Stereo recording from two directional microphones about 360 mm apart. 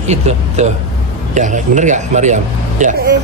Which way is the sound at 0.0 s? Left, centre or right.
Centre.